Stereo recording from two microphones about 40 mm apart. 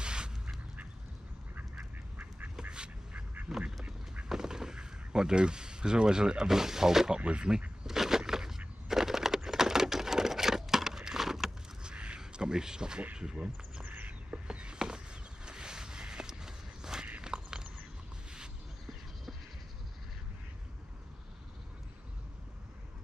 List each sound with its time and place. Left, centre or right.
0.0 s duck: right
3.1 s duck: right
3.8 s duck: right
4.3 s speech: centre
7.2 s speech: right
7.8 s a sound: centre
11.8 s a sound: right
13.1 s speech: right
13.8 s bird: right
14.3 s a sound: right